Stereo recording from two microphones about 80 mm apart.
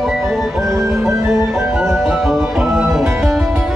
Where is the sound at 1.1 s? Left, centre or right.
Right.